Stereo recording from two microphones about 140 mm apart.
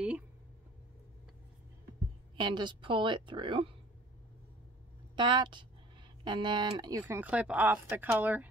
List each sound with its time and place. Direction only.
2.3 s a woman's voice: 35° right (ahead or behind)
5.1 s a woman's voice: 35° right (ahead or behind)
7.0 s a woman's voice: 15° right (ahead or behind)